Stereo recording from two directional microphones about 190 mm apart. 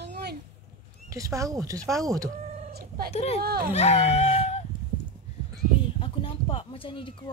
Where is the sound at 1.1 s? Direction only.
15° right (ahead or behind).